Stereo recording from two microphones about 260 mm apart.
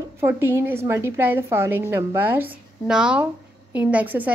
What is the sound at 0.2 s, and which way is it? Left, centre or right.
A woman's voice, centre.